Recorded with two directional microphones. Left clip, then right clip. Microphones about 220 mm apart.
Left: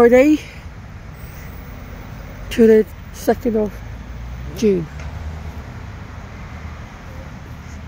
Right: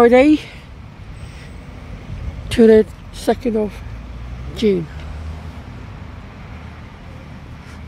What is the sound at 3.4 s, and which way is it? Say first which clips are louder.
Speech: even; 5° right (ahead or behind).